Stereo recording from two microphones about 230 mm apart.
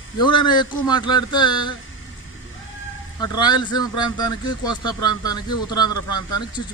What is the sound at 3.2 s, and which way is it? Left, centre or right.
Speech, centre.